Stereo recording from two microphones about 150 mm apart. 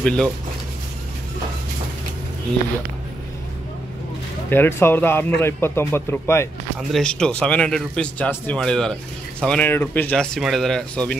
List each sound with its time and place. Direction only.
0.0 s a man's voice: 5° left (ahead or behind)
4.5 s a man's voice: 15° left (ahead or behind)
6.9 s speech: 5° left (ahead or behind)